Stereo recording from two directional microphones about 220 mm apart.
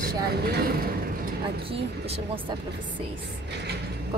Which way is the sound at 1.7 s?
25° right (ahead or behind).